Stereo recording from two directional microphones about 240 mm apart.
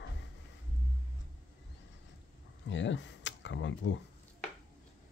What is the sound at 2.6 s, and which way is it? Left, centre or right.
Speech, left.